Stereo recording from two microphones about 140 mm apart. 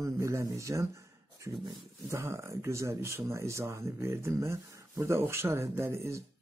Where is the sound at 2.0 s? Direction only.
20° right (ahead or behind).